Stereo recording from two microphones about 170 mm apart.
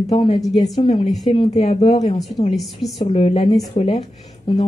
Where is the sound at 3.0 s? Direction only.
35° left (ahead or behind).